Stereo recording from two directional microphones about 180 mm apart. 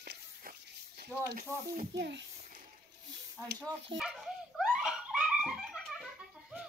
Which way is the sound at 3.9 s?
Centre (ahead or behind).